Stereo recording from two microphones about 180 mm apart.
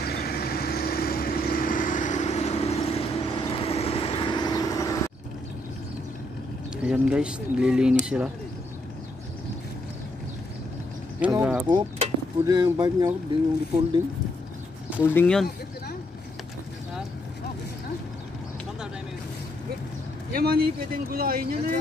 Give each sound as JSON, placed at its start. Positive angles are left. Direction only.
{"t": 0.0, "sound": "vehicle", "side_deg": 60}
{"t": 6.8, "sound": "speech", "side_deg": -5}
{"t": 11.1, "sound": "speech", "side_deg": -5}
{"t": 11.6, "sound": "speech", "side_deg": -25}
{"t": 15.0, "sound": "speech", "side_deg": 10}
{"t": 20.3, "sound": "speech", "side_deg": -55}